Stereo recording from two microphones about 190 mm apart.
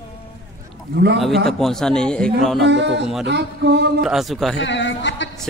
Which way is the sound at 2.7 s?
65° right (ahead or behind).